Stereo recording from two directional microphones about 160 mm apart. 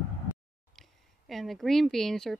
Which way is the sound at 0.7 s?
Centre (ahead or behind).